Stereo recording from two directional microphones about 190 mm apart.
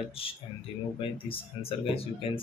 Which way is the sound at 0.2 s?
30° left (ahead or behind).